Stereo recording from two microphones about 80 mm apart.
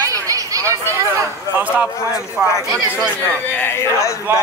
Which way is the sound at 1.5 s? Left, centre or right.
Centre.